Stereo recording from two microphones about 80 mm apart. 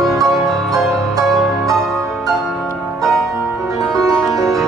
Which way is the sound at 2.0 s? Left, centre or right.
Right.